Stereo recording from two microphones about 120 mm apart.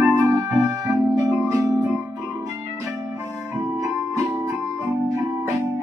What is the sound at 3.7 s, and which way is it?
Music, 25° right (ahead or behind).